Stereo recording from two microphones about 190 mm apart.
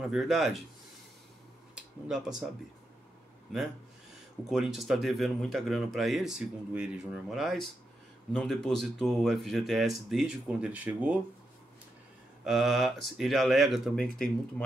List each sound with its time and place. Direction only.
0.1 s speech: centre (ahead or behind)
1.8 s speech: 5° right (ahead or behind)
4.5 s speech: centre (ahead or behind)
12.4 s speech: centre (ahead or behind)